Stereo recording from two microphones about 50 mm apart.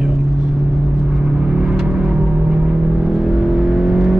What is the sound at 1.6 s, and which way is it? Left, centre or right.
Vehicle, centre.